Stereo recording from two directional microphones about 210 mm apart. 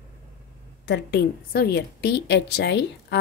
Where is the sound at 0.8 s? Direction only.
50° left (ahead or behind).